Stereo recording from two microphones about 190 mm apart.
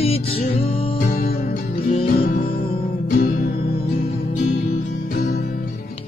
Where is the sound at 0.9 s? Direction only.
50° left (ahead or behind).